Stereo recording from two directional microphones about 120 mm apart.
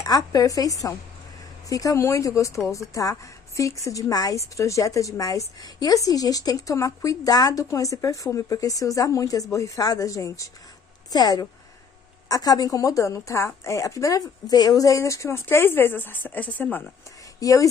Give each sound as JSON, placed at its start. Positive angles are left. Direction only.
{"t": 0.0, "sound": "a woman's voice", "side_deg": 30}
{"t": 17.4, "sound": "speech", "side_deg": 30}